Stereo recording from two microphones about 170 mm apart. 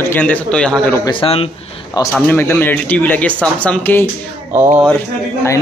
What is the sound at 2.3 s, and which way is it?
A man's voice, 10° left (ahead or behind).